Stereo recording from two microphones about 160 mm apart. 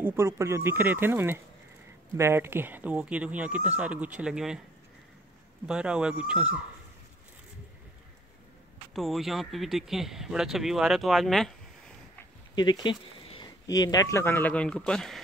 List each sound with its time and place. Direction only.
0.0 s speech: 15° right (ahead or behind)
5.7 s speech: 5° right (ahead or behind)
8.9 s speech: centre (ahead or behind)
12.5 s speech: 30° left (ahead or behind); by 15.1 s 5° left (ahead or behind)